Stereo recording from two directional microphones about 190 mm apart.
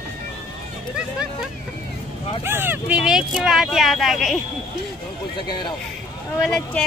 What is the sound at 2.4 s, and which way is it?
Speech, 10° right (ahead or behind).